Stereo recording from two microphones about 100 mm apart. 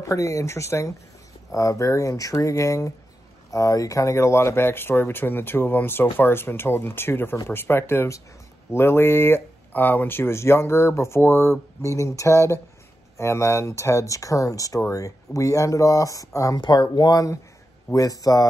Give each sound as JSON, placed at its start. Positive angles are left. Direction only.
{"t": 0.0, "sound": "speech", "side_deg": 30}
{"t": 16.5, "sound": "speech", "side_deg": 50}